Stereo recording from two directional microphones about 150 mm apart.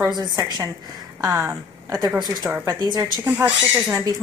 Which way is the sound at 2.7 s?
30° right (ahead or behind).